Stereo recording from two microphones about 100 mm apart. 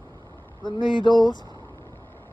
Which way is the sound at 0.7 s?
50° left (ahead or behind).